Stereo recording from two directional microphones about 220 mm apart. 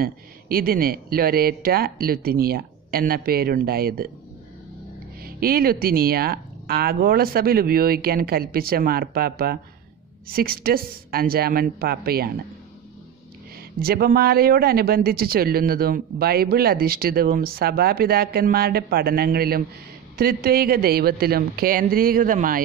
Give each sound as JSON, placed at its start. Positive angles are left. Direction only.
{"t": 0.0, "sound": "speech", "side_deg": -40}
{"t": 5.2, "sound": "speech", "side_deg": -40}
{"t": 13.7, "sound": "speech", "side_deg": -45}